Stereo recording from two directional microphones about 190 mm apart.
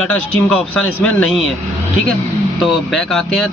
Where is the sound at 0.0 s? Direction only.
5° left (ahead or behind).